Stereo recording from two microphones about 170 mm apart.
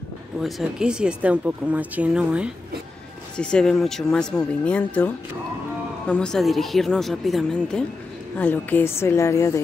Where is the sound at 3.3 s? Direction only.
5° left (ahead or behind).